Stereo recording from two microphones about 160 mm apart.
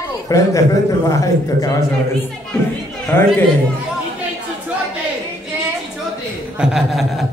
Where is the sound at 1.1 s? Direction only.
20° left (ahead or behind).